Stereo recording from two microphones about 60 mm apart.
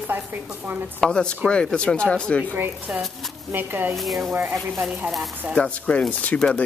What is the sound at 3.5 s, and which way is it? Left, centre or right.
Speech, right.